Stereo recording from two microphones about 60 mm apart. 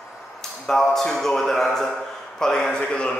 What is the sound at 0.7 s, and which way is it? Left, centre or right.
Speech, centre.